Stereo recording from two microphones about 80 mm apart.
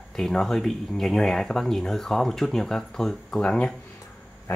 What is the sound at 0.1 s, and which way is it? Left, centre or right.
Speech, centre.